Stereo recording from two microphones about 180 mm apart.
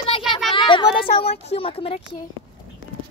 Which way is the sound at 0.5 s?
25° left (ahead or behind).